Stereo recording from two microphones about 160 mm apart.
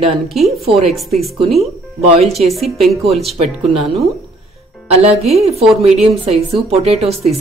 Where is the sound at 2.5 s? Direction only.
Centre (ahead or behind).